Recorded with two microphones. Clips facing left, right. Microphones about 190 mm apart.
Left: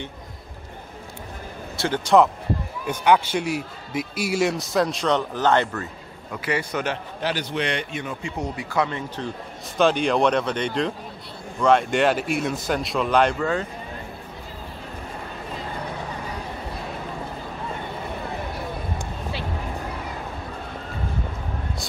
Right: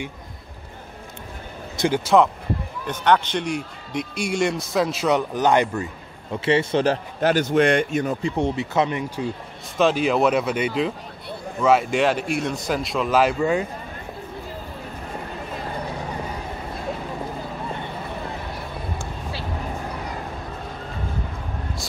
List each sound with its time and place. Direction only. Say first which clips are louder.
1.8 s speech: right 4 dB; 15° right (ahead or behind)
2.9 s a man's voice: left 1 dB; 10° left (ahead or behind); by 5.9 s 15° right (ahead or behind)
6.3 s a man's voice: right 6 dB; 25° right (ahead or behind)
7.2 s speech: right 9 dB; 50° right (ahead or behind); by 9.3 s 15° right (ahead or behind)
9.8 s a man's voice: right 1 dB; centre (ahead or behind)